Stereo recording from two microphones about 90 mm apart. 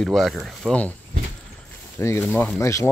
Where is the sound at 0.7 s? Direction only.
15° left (ahead or behind).